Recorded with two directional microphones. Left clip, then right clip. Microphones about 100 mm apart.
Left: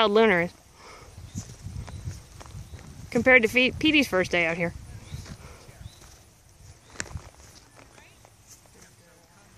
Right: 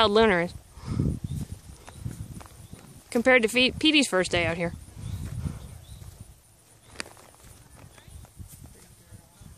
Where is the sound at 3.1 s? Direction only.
20° right (ahead or behind).